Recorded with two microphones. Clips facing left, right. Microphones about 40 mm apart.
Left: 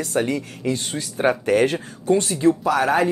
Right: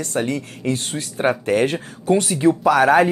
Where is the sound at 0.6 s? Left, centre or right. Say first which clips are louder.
Right 2 dB; centre.